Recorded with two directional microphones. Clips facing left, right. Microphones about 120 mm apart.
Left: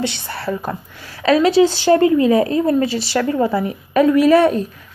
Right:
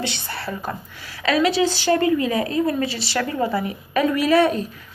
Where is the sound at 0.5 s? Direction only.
10° left (ahead or behind).